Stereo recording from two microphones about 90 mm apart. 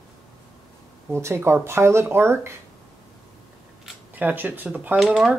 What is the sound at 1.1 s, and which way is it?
Speech, 30° right (ahead or behind).